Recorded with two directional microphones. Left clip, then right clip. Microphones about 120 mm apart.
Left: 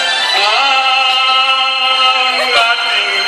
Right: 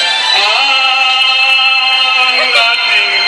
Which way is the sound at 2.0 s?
55° left (ahead or behind).